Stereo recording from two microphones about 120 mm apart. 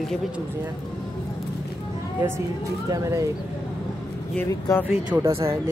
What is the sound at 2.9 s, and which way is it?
Speech, 25° right (ahead or behind).